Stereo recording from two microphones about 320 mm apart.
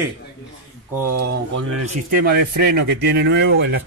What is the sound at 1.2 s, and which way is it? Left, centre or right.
Speech, right.